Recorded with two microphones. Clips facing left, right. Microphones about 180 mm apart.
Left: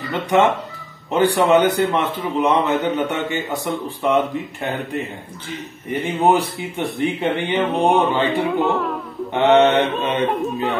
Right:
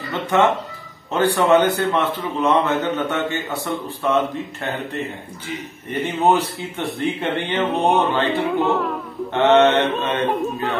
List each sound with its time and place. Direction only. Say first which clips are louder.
0.1 s a man's voice: left 1 dB; 15° left (ahead or behind)
5.9 s a man's voice: left 1 dB; 10° left (ahead or behind)
8.5 s speech: even; centre (ahead or behind)
9.3 s a man's voice: even; 15° left (ahead or behind)
9.9 s speech: left 1 dB; centre (ahead or behind)